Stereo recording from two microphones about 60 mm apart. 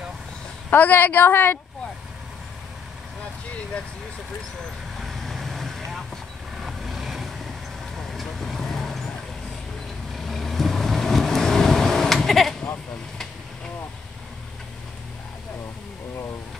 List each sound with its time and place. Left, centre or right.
0.7 s a woman's voice: left
5.0 s vehicle: centre
10.1 s vehicle: centre